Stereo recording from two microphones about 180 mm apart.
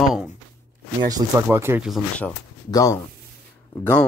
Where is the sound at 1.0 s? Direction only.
20° right (ahead or behind).